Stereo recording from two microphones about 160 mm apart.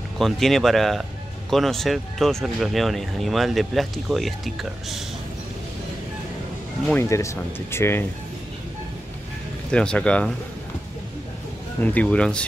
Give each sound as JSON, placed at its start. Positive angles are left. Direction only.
{"t": 0.2, "sound": "speech", "side_deg": 0}
{"t": 6.9, "sound": "speech", "side_deg": 15}
{"t": 9.7, "sound": "speech", "side_deg": 5}
{"t": 11.8, "sound": "speech", "side_deg": 10}